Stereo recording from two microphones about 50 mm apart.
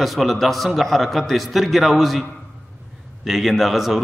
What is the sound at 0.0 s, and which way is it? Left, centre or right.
A man's voice, centre.